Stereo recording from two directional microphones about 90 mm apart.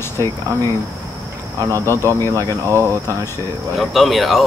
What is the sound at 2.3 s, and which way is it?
Speech, 30° right (ahead or behind).